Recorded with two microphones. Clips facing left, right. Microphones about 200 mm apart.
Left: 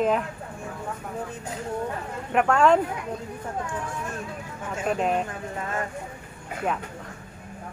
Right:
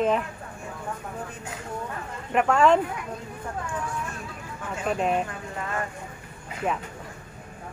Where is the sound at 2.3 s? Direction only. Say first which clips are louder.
Even; centre (ahead or behind).